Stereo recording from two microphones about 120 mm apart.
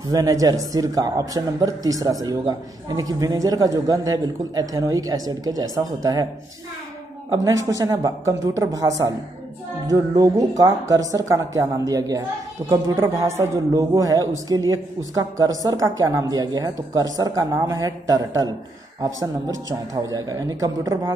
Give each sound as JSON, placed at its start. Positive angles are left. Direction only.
{"t": 0.1, "sound": "speech", "side_deg": -30}
{"t": 7.3, "sound": "a man's voice", "side_deg": -25}